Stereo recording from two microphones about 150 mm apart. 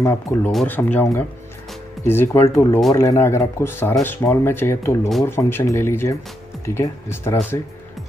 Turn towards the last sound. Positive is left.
turn(degrees=15)  # may be behind; listen again after turning